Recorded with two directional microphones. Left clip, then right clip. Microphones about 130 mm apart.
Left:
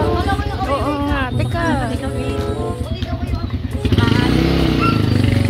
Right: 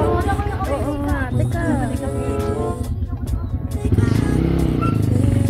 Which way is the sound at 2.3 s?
Centre (ahead or behind).